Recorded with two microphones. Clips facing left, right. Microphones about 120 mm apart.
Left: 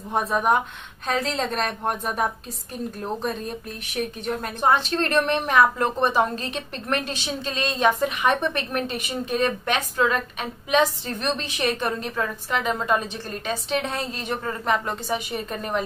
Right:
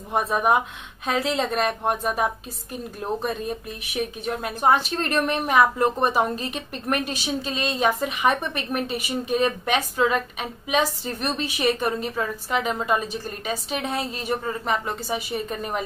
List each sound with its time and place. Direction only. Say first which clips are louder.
0.1 s speech: even; centre (ahead or behind)